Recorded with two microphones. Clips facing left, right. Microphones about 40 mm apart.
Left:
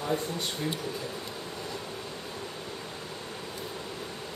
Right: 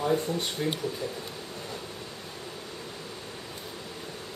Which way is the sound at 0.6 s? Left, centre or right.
Right.